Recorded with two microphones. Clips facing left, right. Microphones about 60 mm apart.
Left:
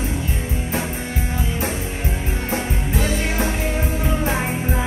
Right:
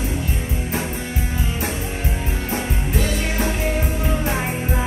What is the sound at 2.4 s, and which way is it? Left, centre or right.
Music, left.